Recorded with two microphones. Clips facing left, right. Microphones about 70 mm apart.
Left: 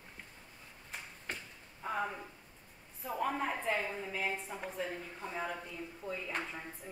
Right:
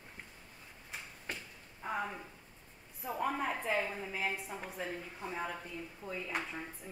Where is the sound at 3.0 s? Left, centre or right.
Centre.